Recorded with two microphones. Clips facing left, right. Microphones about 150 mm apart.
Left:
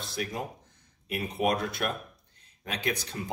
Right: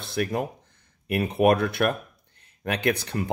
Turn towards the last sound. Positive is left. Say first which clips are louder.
# right 7 dB
turn(degrees=-60)  # may be behind; listen again after turning